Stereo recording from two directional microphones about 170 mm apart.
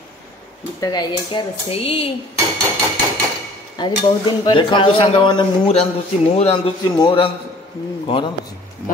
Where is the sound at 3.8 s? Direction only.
25° left (ahead or behind).